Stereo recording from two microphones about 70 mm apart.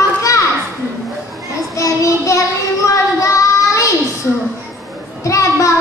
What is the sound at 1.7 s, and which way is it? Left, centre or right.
Child singing, left.